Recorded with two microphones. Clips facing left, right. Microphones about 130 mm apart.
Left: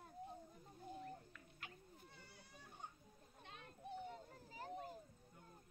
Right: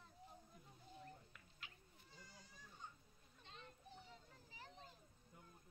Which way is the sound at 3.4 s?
60° left (ahead or behind).